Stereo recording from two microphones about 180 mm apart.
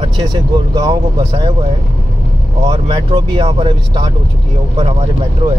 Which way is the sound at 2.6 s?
30° right (ahead or behind).